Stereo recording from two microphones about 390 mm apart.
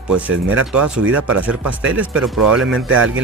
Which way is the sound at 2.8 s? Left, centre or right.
Right.